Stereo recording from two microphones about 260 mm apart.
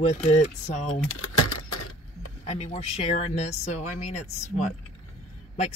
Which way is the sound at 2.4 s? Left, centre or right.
Left.